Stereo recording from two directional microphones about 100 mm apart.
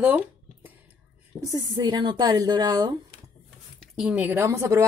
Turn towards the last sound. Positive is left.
turn(degrees=-25)  # may be behind; listen again after turning